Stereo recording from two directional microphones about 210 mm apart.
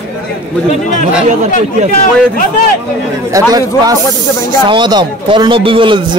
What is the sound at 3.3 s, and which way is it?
A man's voice, 15° right (ahead or behind).